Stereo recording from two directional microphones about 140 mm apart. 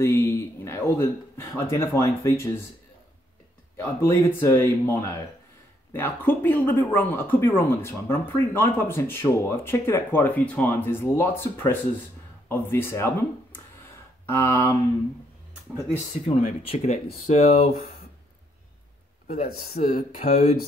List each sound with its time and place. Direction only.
0.0 s speech: 20° left (ahead or behind)
3.7 s speech: 15° left (ahead or behind)
16.1 s speech: 50° left (ahead or behind)
16.7 s speech: 60° left (ahead or behind)
19.2 s speech: 50° left (ahead or behind)
19.8 s speech: 70° left (ahead or behind)